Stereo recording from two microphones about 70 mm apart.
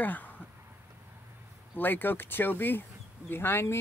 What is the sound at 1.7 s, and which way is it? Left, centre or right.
Speech, left.